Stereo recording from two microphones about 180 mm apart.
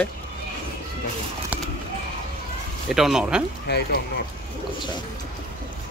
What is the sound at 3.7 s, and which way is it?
Speech, 70° left (ahead or behind).